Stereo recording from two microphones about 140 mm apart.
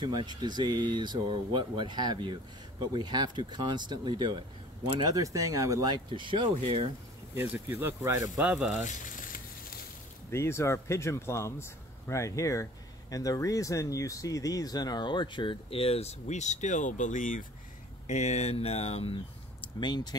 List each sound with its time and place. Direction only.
0.0 s speech: 30° right (ahead or behind)
7.3 s speech: 15° right (ahead or behind)
8.8 s a sound: 70° left (ahead or behind)
10.3 s speech: 20° left (ahead or behind); by 17.5 s 70° left (ahead or behind)
18.0 s speech: 55° left (ahead or behind)
19.8 s speech: 30° left (ahead or behind)